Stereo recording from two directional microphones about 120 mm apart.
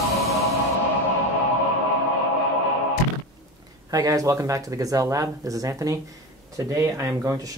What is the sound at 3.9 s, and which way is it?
Speech, 30° right (ahead or behind).